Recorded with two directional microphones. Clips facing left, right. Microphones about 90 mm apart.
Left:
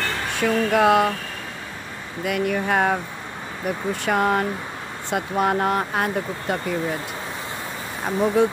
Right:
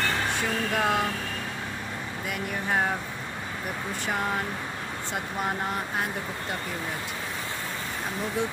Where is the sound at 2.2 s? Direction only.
90° left.